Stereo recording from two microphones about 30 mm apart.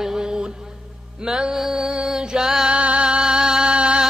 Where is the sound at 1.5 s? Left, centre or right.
Centre.